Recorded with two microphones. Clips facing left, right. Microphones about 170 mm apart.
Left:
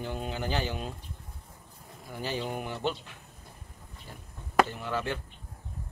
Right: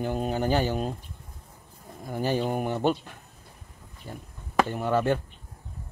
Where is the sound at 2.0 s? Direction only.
50° right (ahead or behind).